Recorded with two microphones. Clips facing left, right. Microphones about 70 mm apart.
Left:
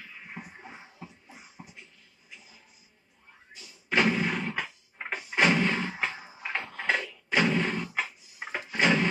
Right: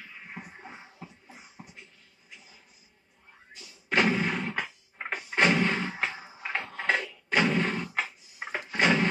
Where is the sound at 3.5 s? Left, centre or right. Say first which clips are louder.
Even; centre.